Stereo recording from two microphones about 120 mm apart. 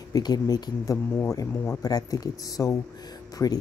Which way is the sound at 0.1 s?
35° left (ahead or behind).